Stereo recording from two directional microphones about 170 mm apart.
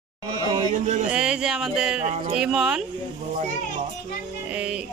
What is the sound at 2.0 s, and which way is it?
Speech, 40° right (ahead or behind).